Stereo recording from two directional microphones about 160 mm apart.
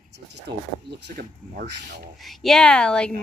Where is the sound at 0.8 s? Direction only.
80° right.